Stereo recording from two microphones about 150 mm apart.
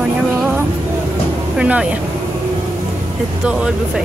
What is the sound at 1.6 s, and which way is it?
Speech, 10° right (ahead or behind).